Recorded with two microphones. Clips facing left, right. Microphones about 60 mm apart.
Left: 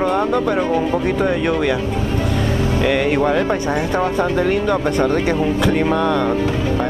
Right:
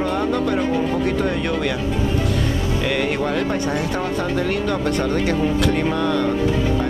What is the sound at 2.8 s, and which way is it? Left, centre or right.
Speech, centre.